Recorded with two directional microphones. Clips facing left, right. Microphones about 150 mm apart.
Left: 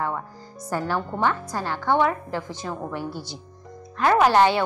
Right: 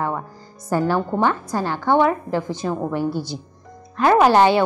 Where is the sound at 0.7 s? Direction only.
25° right (ahead or behind).